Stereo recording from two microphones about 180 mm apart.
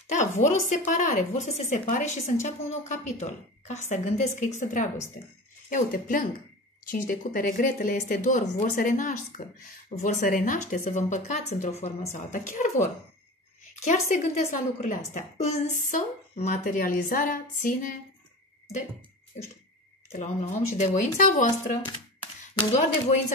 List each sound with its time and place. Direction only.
0.0 s a woman's voice: 40° left (ahead or behind)
5.7 s a woman's voice: 45° left (ahead or behind)
20.1 s a woman's voice: 40° left (ahead or behind)